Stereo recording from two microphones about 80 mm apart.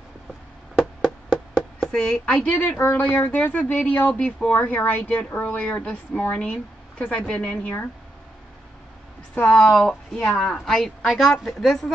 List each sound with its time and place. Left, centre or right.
1.0 s a woman's voice: centre
9.3 s a woman's voice: centre